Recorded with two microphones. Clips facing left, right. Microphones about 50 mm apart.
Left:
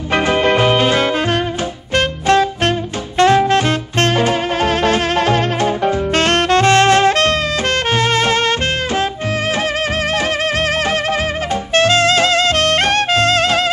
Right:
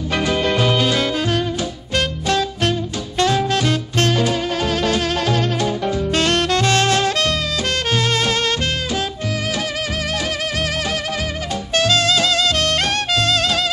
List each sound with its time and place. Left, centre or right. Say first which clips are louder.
0.1 s music: left 5 dB; left
11.7 s music: left 4 dB; left